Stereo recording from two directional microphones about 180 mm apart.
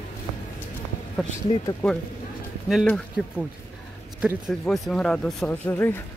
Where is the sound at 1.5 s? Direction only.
35° left (ahead or behind).